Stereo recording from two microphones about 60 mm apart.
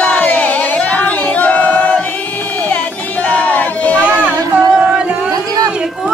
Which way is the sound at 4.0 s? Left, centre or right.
Right.